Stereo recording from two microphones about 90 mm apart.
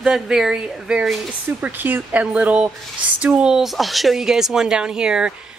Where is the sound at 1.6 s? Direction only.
20° right (ahead or behind).